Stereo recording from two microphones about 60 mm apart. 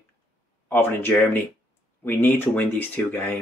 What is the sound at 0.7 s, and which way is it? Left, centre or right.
Speech, left.